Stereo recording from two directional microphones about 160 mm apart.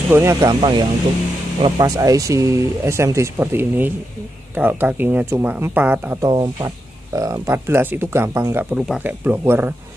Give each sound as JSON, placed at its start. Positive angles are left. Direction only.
{"t": 0.1, "sound": "speech", "side_deg": -15}
{"t": 6.2, "sound": "speech", "side_deg": -25}